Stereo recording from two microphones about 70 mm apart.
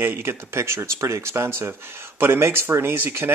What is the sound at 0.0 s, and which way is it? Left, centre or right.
Speech, right.